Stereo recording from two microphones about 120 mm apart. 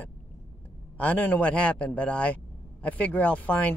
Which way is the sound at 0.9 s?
15° left (ahead or behind).